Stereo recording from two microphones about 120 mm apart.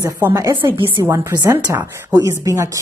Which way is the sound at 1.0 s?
20° right (ahead or behind).